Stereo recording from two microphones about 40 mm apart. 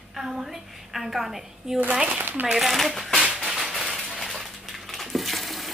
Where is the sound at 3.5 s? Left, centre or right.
Centre.